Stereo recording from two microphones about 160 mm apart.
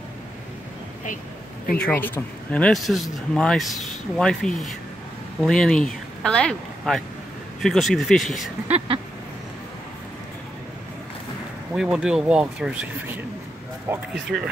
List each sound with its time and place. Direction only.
1.8 s speech: 10° left (ahead or behind)
8.7 s duck: 35° right (ahead or behind)
11.7 s speech: 5° right (ahead or behind)